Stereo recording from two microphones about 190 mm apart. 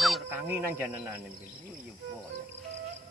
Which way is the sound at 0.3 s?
10° right (ahead or behind).